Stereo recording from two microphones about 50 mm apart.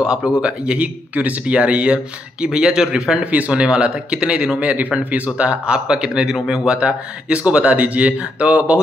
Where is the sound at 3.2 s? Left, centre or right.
Right; by 6.6 s centre.